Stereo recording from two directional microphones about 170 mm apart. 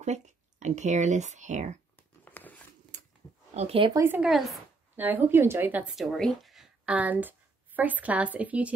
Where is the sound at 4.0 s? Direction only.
10° right (ahead or behind).